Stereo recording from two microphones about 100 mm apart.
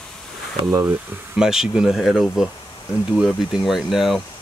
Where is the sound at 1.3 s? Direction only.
5° right (ahead or behind).